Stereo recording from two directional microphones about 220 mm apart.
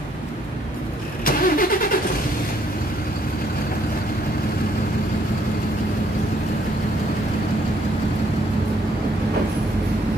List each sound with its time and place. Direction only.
1.2 s vehicle: 40° left (ahead or behind)